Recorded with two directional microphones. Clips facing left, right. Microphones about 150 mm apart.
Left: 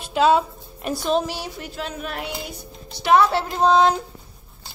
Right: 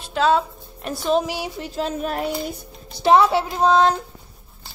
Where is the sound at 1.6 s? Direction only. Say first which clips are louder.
Right 6 dB; 35° right (ahead or behind).